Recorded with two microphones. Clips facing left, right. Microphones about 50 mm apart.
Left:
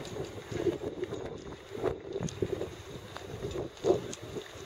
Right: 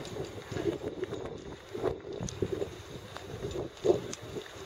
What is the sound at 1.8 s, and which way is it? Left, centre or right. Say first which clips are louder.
Boat: even; centre.